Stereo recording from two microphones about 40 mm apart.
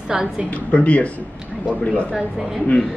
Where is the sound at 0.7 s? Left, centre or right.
Left.